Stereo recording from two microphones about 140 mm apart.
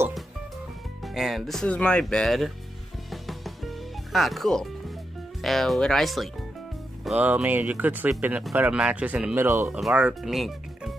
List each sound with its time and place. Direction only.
1.0 s speech: centre (ahead or behind)
3.1 s music: centre (ahead or behind)
5.4 s speech: centre (ahead or behind)
7.2 s speech: 10° right (ahead or behind)
9.8 s speech: 5° right (ahead or behind)